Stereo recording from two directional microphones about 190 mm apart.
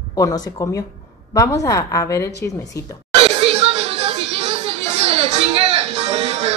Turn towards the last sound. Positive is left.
turn(degrees=-35)  # may be behind; listen again after turning